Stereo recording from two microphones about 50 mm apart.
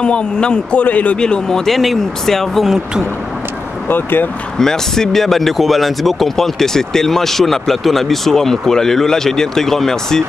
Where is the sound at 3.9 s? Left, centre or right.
Left.